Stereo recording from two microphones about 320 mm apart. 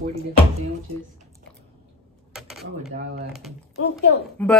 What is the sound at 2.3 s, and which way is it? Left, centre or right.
Speech, centre.